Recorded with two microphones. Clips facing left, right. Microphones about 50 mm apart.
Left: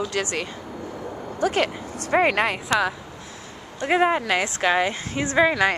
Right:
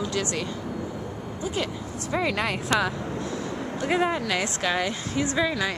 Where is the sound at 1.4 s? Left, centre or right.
Left.